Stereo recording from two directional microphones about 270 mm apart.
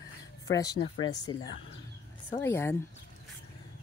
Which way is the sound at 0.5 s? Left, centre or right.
Centre.